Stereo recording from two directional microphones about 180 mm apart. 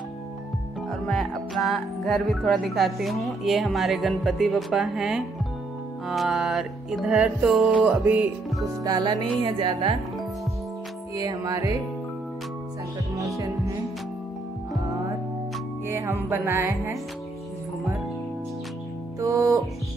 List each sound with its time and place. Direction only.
0.8 s music: centre (ahead or behind)
8.8 s music: 20° right (ahead or behind)
11.1 s music: 20° right (ahead or behind)
15.9 s music: 15° right (ahead or behind)
19.1 s music: 20° right (ahead or behind)